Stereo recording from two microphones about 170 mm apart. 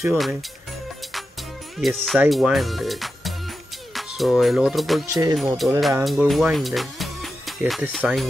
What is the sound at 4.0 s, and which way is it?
Music, centre (ahead or behind).